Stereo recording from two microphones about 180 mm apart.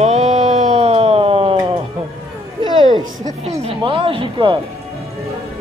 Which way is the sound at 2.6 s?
25° right (ahead or behind).